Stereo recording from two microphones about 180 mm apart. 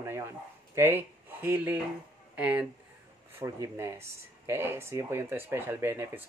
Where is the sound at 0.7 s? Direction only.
10° right (ahead or behind).